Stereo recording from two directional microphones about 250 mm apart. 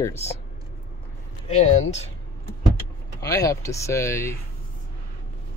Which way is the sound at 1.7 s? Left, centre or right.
Left.